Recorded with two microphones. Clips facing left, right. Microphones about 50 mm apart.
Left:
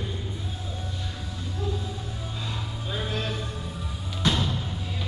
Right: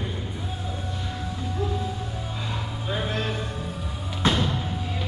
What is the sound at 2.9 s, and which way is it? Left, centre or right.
Music, right.